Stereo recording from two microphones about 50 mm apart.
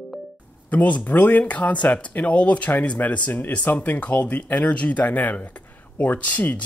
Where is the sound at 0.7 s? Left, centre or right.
Left.